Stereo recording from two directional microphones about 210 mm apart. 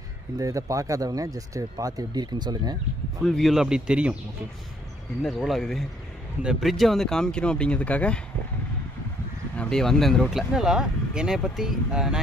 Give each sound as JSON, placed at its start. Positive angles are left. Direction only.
{"t": 0.4, "sound": "speech", "side_deg": -15}
{"t": 3.3, "sound": "speech", "side_deg": 0}
{"t": 5.2, "sound": "speech", "side_deg": 0}
{"t": 9.6, "sound": "speech", "side_deg": 5}